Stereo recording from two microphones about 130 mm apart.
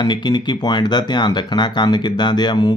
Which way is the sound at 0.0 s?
35° left (ahead or behind).